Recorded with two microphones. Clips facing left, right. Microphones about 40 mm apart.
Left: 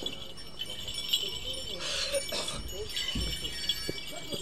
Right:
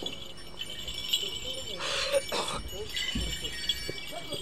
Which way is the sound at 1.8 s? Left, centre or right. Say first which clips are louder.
Right 5 dB; right.